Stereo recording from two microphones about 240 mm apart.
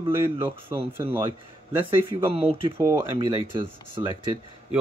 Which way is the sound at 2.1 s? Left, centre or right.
Right.